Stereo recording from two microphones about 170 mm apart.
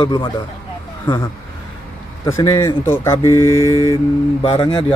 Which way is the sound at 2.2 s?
20° left (ahead or behind).